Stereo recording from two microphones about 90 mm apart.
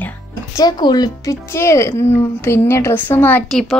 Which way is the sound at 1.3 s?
30° left (ahead or behind).